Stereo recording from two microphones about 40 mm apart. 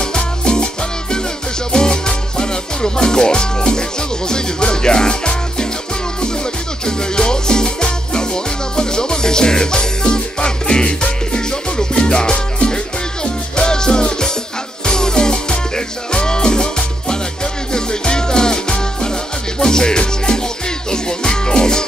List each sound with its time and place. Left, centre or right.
0.0 s music: left
1.7 s music: left
6.9 s music: centre
17.7 s music: centre